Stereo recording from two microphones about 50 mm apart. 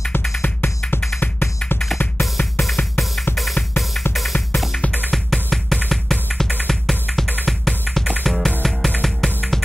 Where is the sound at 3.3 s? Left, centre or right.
Centre.